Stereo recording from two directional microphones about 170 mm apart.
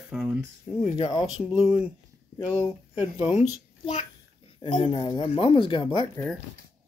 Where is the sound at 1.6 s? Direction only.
40° left (ahead or behind).